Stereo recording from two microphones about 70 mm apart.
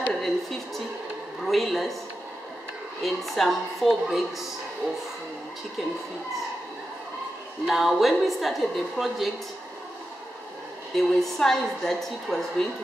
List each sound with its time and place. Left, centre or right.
0.1 s a sound: centre
1.4 s a woman's voice: centre
3.0 s a woman's voice: centre
7.6 s a woman's voice: centre
11.0 s a woman's voice: centre